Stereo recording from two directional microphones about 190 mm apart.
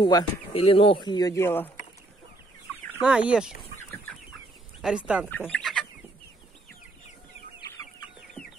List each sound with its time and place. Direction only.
0.0 s speech: 30° left (ahead or behind); by 1.7 s 10° left (ahead or behind)
2.9 s chicken: 5° right (ahead or behind)
4.8 s speech: 5° right (ahead or behind)
5.3 s speech: 10° left (ahead or behind)